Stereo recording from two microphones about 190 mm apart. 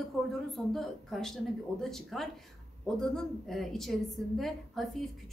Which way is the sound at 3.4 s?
Centre (ahead or behind).